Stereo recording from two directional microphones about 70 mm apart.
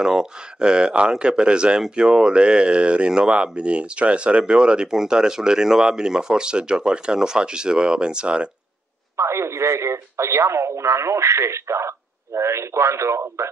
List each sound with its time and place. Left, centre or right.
0.0 s speech: centre
9.1 s speech: right